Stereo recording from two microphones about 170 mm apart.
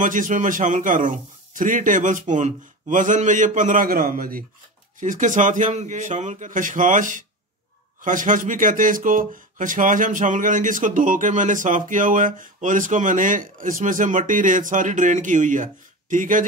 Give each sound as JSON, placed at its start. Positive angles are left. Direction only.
{"t": 0.0, "sound": "speech", "side_deg": -50}